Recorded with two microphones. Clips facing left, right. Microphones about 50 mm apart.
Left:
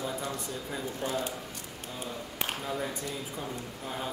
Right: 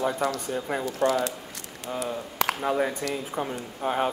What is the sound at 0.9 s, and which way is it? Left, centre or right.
Speech, right.